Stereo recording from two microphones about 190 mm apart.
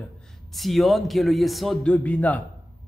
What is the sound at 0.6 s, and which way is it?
Speech, centre (ahead or behind).